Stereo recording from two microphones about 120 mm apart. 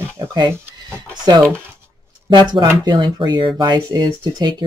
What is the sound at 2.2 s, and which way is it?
Speech, 40° right (ahead or behind).